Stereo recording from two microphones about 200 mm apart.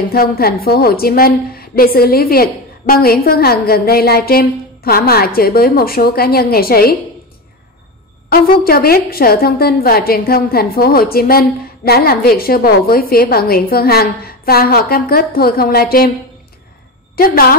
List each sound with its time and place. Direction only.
0.1 s a woman's voice: 50° left (ahead or behind)
8.3 s a woman's voice: 50° left (ahead or behind)
17.1 s a woman's voice: 50° left (ahead or behind)